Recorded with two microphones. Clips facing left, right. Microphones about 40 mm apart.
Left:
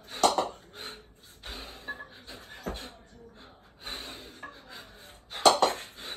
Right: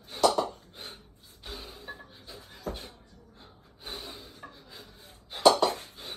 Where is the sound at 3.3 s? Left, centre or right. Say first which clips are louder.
Left 2 dB; left.